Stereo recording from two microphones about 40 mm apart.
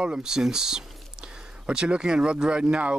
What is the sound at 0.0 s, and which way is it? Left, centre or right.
Speech, right.